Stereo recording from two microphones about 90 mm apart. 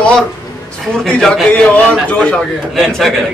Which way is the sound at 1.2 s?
5° left (ahead or behind).